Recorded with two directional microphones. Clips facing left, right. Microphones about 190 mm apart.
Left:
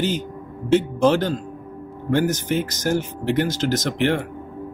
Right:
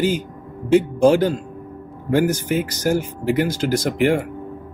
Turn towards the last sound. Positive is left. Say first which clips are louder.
# right 3 dB
turn(degrees=-10)  # may be behind; listen again after turning